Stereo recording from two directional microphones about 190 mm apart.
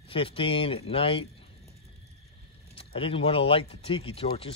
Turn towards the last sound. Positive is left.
turn(degrees=30)  # may be behind; listen again after turning